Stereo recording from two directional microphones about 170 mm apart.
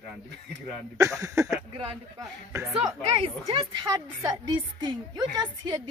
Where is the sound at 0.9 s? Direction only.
20° right (ahead or behind).